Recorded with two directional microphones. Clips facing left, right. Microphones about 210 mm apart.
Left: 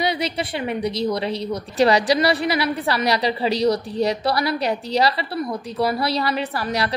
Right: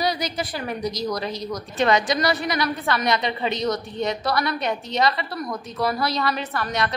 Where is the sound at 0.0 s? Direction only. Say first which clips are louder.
Left 2 dB; 25° left (ahead or behind).